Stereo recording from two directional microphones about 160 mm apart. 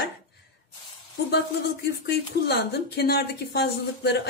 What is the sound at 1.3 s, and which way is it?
Speech, 85° left.